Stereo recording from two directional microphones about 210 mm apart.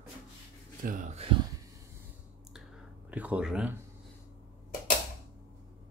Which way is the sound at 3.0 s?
5° right (ahead or behind).